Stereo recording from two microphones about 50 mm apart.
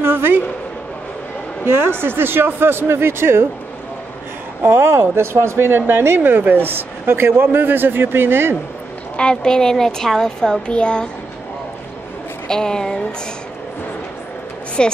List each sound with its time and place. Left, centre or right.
0.0 s a woman's voice: right
1.7 s speech: right
4.6 s speech: right
9.1 s a child's voice: centre
12.4 s a child's voice: centre
14.8 s a child's voice: centre